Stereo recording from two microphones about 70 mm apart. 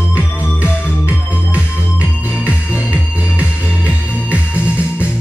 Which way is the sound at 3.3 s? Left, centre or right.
Centre.